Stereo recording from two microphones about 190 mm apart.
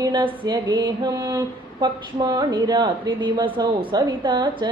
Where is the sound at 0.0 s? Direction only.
25° right (ahead or behind).